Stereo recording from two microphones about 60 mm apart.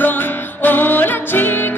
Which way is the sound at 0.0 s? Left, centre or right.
Left.